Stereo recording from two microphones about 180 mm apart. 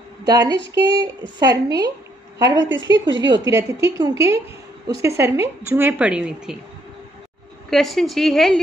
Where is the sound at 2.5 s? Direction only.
90° right.